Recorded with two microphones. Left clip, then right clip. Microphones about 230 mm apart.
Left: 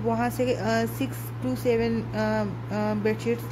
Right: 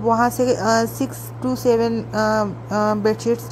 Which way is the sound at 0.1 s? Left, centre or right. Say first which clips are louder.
Right 9 dB; right.